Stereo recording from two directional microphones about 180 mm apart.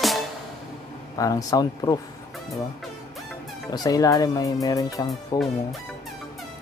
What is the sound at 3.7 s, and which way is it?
Speech, 20° left (ahead or behind).